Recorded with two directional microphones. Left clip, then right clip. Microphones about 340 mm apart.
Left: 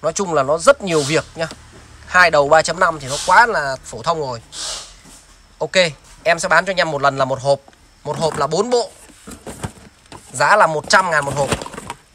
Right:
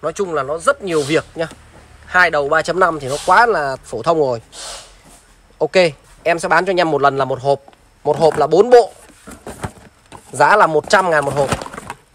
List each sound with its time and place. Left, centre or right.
0.0 s speech: centre
5.6 s speech: centre
8.1 s a sound: centre